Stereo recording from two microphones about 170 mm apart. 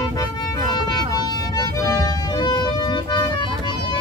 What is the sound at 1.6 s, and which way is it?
Music, 20° left (ahead or behind).